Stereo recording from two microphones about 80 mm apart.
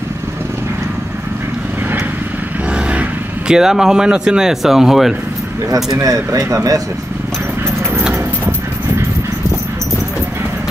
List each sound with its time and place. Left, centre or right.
2.7 s speech: centre
5.9 s speech: right